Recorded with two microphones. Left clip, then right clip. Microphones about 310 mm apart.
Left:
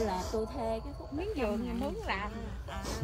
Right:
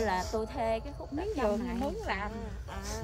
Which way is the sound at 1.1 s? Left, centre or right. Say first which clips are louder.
Right 3 dB; right.